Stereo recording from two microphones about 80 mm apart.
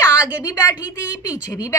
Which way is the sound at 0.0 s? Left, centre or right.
Left.